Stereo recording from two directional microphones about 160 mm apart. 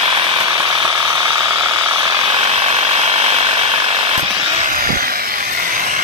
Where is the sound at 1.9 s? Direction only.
40° right (ahead or behind).